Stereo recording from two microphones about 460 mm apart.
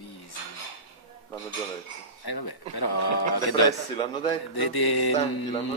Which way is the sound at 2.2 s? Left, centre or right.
Left.